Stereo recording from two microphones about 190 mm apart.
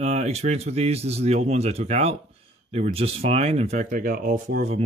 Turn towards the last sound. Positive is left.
turn(degrees=-50)  # may be behind; listen again after turning